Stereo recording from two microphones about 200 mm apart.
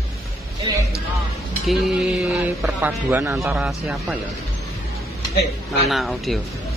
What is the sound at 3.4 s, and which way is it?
Speech, centre (ahead or behind).